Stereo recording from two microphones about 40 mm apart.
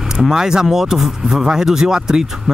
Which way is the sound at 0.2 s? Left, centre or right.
Centre.